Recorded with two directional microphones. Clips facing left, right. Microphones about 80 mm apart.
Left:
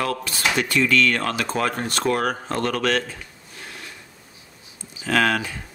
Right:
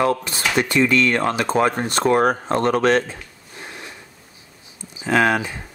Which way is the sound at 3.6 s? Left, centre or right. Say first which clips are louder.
Right 3 dB; right.